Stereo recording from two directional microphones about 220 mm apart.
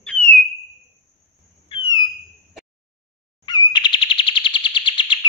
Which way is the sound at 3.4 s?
20° left (ahead or behind).